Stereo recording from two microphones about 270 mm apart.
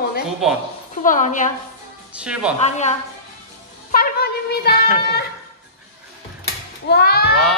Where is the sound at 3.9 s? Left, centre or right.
Left.